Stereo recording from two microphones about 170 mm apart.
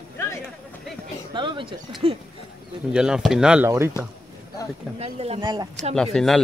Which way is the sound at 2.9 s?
5° right (ahead or behind).